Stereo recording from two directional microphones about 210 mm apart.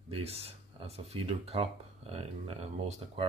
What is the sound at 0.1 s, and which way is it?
Speech, 30° right (ahead or behind).